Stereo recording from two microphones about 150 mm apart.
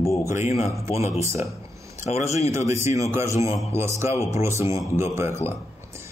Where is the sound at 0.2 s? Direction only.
20° right (ahead or behind).